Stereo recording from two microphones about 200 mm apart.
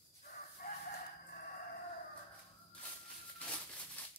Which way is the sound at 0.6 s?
45° left (ahead or behind).